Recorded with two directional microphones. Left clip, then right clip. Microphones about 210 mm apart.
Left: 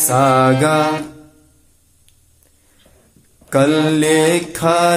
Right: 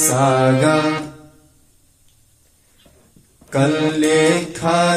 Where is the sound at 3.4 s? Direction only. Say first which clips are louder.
Left 4 dB; 45° left (ahead or behind).